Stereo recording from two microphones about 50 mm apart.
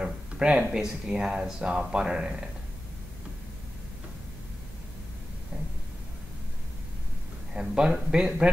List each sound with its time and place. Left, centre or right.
0.0 s speech: right
7.7 s speech: centre